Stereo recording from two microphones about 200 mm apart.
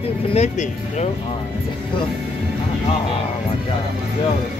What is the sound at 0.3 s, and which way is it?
Speech, 35° left (ahead or behind).